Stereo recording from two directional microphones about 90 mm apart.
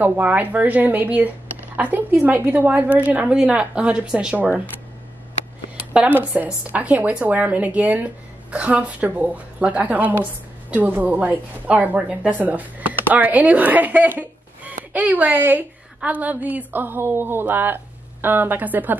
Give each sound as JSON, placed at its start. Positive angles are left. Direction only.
{"t": 0.0, "sound": "a woman's voice", "side_deg": -20}
{"t": 6.3, "sound": "a woman's voice", "side_deg": -20}